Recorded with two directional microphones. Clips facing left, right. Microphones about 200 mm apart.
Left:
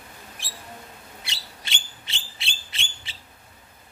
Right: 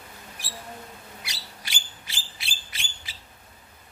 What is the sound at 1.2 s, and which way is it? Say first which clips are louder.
Bird: left 1 dB; 25° left (ahead or behind).